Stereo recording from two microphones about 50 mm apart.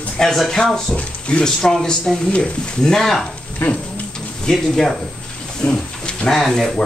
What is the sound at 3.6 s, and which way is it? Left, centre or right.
Speech, left.